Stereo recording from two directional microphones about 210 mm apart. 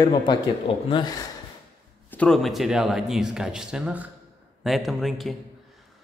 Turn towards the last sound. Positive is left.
turn(degrees=0)  # may be behind; listen again after turning